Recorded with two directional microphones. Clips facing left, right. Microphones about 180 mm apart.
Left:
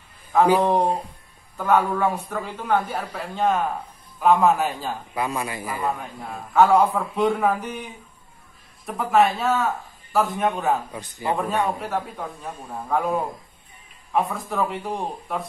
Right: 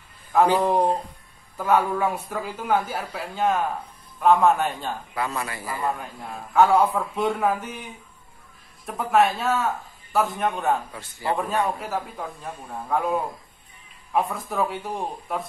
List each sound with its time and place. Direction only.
0.3 s a man's voice: centre (ahead or behind)
1.6 s a man's voice: 5° right (ahead or behind)
5.1 s speech: 15° left (ahead or behind)
5.9 s a man's voice: centre (ahead or behind)
10.9 s speech: 15° left (ahead or behind)
11.3 s a man's voice: centre (ahead or behind)